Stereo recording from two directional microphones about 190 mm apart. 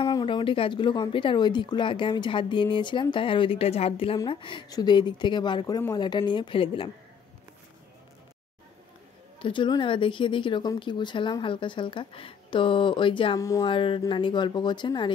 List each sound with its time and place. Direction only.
0.0 s speech: 25° left (ahead or behind)
9.4 s speech: 25° left (ahead or behind)